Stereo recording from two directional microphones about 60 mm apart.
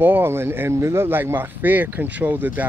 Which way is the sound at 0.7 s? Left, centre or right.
Right.